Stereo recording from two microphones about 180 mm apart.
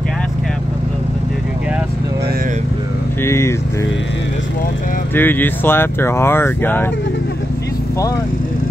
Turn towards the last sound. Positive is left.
turn(degrees=10)  # may be behind; listen again after turning